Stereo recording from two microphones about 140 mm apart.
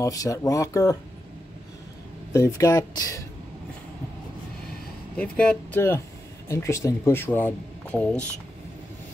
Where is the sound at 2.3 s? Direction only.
20° left (ahead or behind).